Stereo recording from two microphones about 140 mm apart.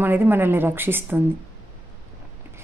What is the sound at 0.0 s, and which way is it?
A woman's voice, 15° right (ahead or behind).